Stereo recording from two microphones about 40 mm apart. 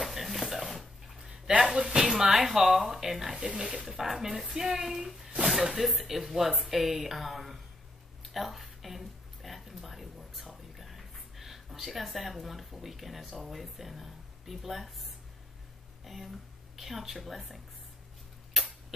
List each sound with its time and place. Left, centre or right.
0.0 s a sound: centre
1.8 s speech: right
2.1 s speech: centre
3.5 s speech: right
4.0 s speech: centre
8.2 s a sound: centre
16.0 s a woman's voice: centre